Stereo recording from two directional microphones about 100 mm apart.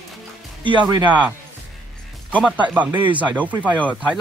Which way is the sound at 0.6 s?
55° right (ahead or behind).